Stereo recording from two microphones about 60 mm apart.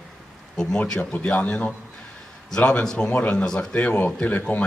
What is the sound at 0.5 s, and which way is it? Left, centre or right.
Speech, centre.